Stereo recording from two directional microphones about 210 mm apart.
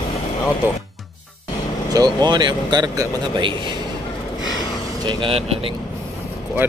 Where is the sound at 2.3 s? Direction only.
20° right (ahead or behind).